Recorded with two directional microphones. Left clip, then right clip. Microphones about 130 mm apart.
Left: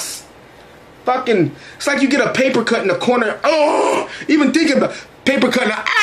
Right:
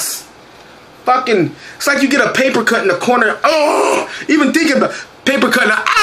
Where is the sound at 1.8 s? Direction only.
40° left (ahead or behind).